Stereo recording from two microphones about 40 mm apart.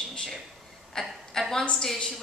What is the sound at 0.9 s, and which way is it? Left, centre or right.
A woman's voice, centre.